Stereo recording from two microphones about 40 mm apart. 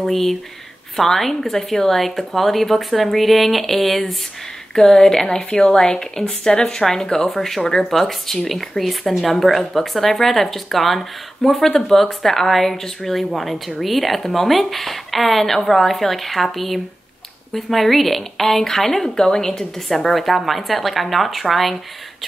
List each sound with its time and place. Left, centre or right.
0.0 s a woman's voice: centre
4.7 s a woman's voice: centre